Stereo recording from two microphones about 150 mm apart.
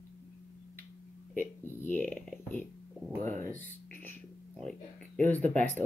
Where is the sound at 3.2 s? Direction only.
55° right (ahead or behind).